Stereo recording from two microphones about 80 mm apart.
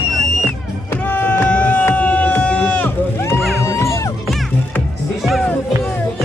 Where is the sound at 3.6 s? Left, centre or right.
Left.